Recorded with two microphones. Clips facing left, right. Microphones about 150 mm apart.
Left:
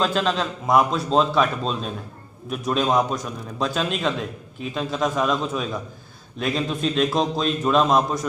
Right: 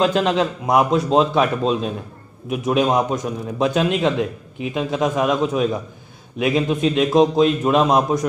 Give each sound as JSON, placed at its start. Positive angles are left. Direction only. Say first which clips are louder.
{"t": 0.0, "sound": "a man's voice", "louder": "right 5 dB", "side_deg": -20}